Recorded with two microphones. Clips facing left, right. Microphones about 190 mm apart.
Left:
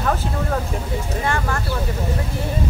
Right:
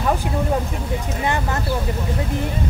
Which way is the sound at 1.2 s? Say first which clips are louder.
Right 1 dB; 20° right (ahead or behind).